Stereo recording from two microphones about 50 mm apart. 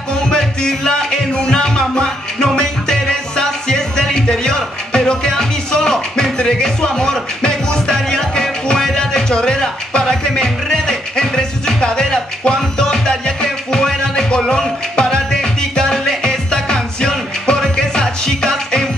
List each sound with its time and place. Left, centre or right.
0.3 s music: centre